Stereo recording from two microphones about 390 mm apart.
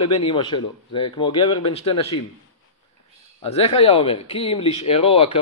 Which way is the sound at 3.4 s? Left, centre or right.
Centre.